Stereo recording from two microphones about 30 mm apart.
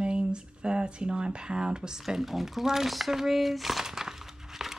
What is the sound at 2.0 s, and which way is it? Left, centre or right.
Speech, centre.